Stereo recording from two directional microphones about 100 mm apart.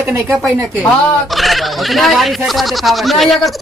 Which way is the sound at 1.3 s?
Centre (ahead or behind).